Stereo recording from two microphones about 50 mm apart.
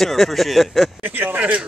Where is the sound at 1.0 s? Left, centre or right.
Right.